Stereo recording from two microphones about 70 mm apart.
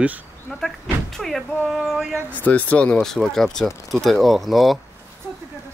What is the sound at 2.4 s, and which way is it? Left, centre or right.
Speech, left.